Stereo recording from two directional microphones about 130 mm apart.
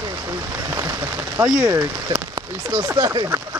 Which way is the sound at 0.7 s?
25° right (ahead or behind).